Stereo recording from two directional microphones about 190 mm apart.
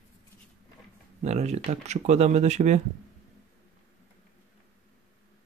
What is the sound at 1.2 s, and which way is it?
Speech, 35° right (ahead or behind).